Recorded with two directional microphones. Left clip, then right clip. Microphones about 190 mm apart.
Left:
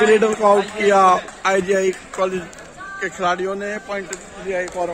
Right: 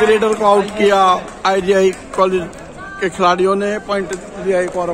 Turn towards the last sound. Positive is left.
turn(degrees=0)  # may be behind; listen again after turning